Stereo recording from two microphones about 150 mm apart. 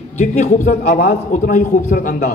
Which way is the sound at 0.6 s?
70° left (ahead or behind).